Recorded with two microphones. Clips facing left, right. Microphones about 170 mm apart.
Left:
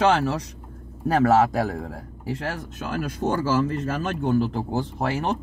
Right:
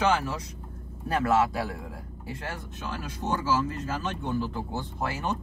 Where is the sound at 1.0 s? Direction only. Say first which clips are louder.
Left 6 dB; 90° left.